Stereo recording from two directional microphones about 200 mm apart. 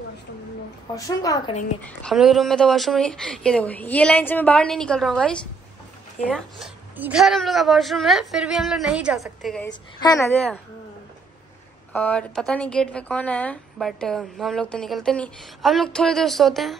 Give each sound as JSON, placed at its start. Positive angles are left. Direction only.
{"t": 0.9, "sound": "a woman's voice", "side_deg": 15}
{"t": 1.8, "sound": "a woman's voice", "side_deg": 5}
{"t": 9.9, "sound": "a woman's voice", "side_deg": 15}
{"t": 11.9, "sound": "a woman's voice", "side_deg": 5}